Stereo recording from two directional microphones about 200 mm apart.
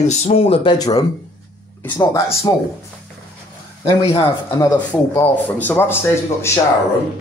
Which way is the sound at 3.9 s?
20° left (ahead or behind).